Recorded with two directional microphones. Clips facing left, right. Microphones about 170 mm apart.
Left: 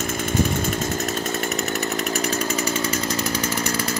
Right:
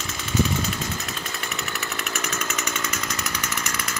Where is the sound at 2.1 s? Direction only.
35° left (ahead or behind).